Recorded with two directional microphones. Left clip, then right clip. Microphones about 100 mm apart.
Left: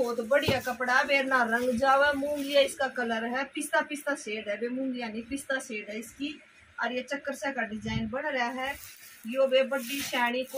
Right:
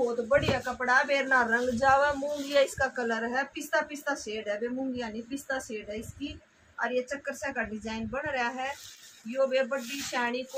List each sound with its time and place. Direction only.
0.3 s speech: 10° right (ahead or behind)
6.8 s a woman's voice: 10° right (ahead or behind)
9.5 s speech: 10° right (ahead or behind)